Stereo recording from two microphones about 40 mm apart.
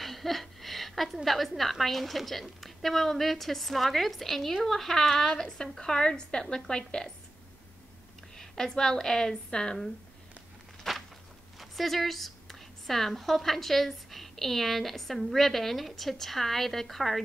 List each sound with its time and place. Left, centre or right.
0.0 s a woman's voice: centre
8.4 s a woman's voice: centre
10.9 s a sound: centre
11.5 s a woman's voice: centre